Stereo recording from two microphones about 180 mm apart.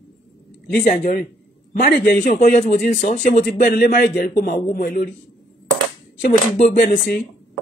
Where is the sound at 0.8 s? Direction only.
45° left (ahead or behind).